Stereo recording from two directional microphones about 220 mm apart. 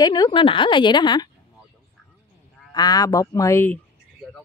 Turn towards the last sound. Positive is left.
turn(degrees=10)  # may be behind; listen again after turning